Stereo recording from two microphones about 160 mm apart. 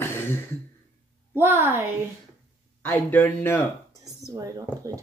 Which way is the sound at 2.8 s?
10° left (ahead or behind).